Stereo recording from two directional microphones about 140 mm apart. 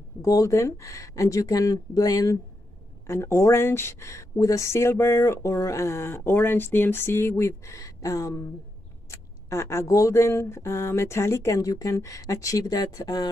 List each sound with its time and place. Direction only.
0.2 s speech: 25° left (ahead or behind)